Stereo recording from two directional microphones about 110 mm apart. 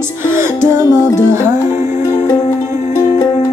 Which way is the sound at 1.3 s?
25° right (ahead or behind).